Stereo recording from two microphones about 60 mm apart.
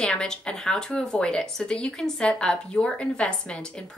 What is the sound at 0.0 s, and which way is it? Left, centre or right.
A woman's voice, centre.